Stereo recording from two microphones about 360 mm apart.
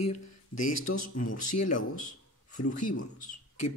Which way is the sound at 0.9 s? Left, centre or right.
Left.